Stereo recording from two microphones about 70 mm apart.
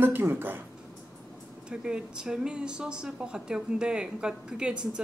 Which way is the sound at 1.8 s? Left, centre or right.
Centre.